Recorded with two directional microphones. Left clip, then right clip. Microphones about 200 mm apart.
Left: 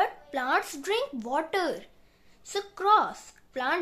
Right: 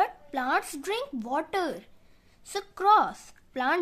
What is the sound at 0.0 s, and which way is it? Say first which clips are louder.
A woman's voice: even; 25° right (ahead or behind).